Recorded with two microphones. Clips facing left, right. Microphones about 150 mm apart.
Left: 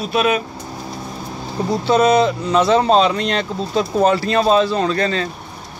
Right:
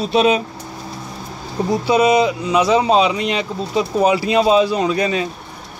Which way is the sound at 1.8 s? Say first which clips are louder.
Left 1 dB; 10° right (ahead or behind).